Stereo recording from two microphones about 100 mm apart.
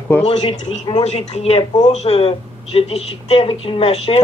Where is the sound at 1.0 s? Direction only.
90° left; by 4.2 s 70° left (ahead or behind).